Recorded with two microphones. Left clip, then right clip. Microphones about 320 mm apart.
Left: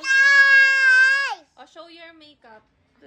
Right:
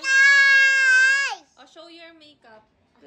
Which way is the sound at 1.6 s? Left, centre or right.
Centre.